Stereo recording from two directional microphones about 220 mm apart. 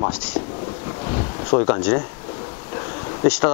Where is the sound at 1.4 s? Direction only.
25° left (ahead or behind).